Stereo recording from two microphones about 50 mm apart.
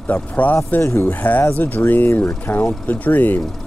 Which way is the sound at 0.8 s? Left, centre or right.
Left.